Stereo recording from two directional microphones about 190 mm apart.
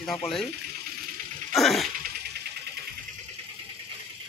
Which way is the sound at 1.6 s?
Centre (ahead or behind).